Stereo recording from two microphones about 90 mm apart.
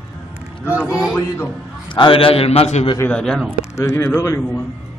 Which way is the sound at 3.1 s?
10° left (ahead or behind).